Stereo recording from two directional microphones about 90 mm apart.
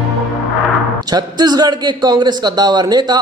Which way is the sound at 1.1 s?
50° right (ahead or behind).